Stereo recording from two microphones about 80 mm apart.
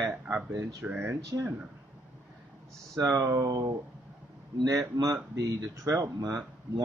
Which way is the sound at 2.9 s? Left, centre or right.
Right.